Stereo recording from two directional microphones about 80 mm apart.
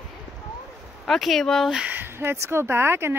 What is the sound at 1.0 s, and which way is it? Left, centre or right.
Speech, centre.